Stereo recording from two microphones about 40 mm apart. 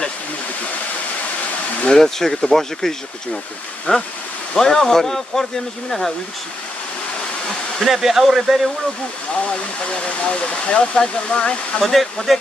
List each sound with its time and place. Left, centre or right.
1.9 s speech: centre
3.9 s speech: left
4.6 s speech: centre
7.8 s speech: centre
9.3 s speech: left
11.8 s speech: centre